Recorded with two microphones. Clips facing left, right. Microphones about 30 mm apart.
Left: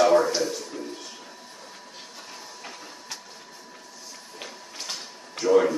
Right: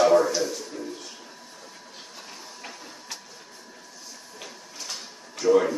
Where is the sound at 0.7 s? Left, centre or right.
Left.